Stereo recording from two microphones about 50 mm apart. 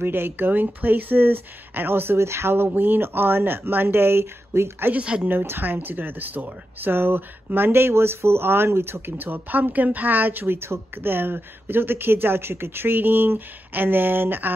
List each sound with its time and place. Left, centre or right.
0.0 s speech: right
2.1 s speech: right
2.5 s speech: right
5.0 s speech: centre
5.3 s speech: right
9.1 s speech: right
10.4 s speech: right